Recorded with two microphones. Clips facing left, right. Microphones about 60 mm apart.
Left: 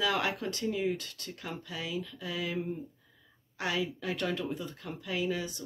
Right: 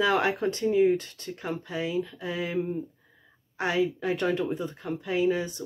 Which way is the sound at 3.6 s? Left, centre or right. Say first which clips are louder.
Right 7 dB; right.